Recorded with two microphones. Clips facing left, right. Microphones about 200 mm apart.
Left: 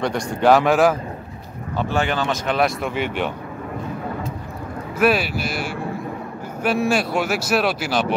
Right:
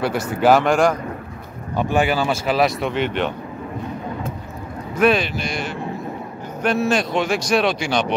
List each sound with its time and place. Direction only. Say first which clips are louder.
0.0 s speech: right 1 dB; 5° right (ahead or behind)
1.8 s speech: right 3 dB; 15° right (ahead or behind)
2.9 s speech: right 2 dB; 10° left (ahead or behind)
4.9 s speech: right 1 dB; 5° left (ahead or behind)